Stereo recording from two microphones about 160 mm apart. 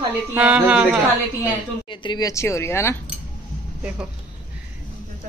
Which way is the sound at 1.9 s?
25° left (ahead or behind).